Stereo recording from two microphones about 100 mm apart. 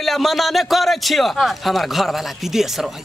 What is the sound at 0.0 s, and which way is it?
A man's voice, centre (ahead or behind).